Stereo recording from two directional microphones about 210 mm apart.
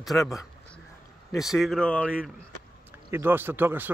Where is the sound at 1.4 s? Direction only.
Centre (ahead or behind).